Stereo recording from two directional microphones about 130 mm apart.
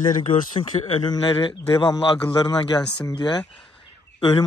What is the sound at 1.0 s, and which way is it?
A man's voice, 40° left (ahead or behind).